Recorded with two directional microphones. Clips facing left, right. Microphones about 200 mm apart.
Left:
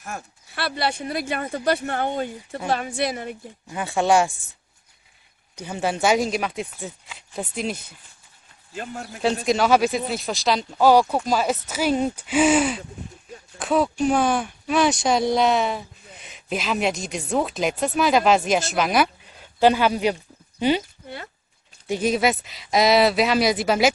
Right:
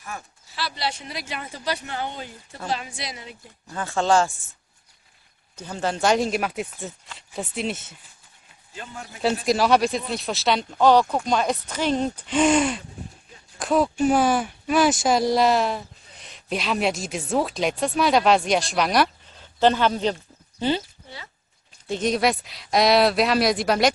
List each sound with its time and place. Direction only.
0.0 s speech: 50° left (ahead or behind)
3.6 s speech: 15° left (ahead or behind)
5.6 s speech: 10° left (ahead or behind)
8.7 s a man's voice: 45° left (ahead or behind)
9.2 s speech: centre (ahead or behind)
21.8 s speech: 10° left (ahead or behind)